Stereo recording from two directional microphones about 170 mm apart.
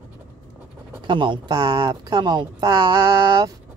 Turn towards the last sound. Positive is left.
turn(degrees=-20)  # may be behind; listen again after turning